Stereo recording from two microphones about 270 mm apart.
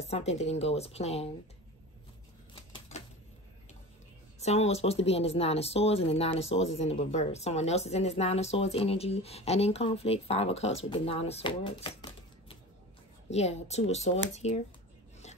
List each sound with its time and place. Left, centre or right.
0.0 s speech: left
4.4 s speech: left
13.3 s speech: left